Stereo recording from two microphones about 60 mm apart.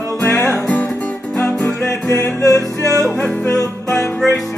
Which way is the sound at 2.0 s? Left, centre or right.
Left.